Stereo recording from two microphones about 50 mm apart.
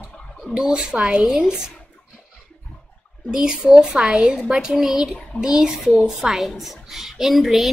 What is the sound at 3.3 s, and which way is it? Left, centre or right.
A woman's voice, centre.